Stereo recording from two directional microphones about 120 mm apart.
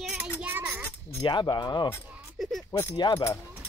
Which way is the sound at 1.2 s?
35° left (ahead or behind).